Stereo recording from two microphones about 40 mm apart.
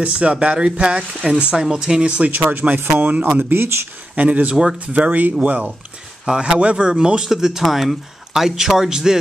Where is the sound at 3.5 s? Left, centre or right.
Right.